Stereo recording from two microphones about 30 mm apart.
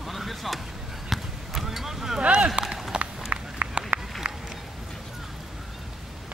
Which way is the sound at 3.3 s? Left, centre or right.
Right.